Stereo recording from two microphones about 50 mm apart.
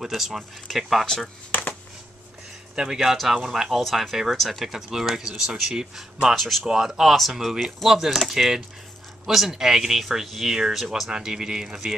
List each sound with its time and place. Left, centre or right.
0.0 s speech: centre
1.5 s a sound: left
2.7 s speech: centre
3.8 s speech: centre
6.3 s speech: centre
6.6 s speech: centre